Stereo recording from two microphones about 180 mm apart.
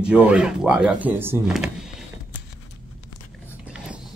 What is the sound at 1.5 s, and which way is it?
Power windows, centre (ahead or behind).